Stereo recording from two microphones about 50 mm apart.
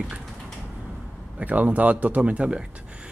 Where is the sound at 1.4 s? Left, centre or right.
Right.